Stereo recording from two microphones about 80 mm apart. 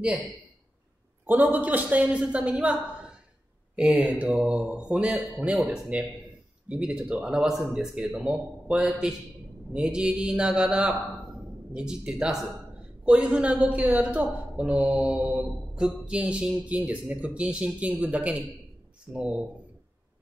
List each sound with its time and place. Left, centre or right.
1.2 s a woman's voice: right
3.7 s speech: centre